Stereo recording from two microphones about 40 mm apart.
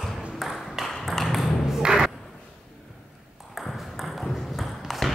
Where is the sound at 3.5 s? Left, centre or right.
Centre.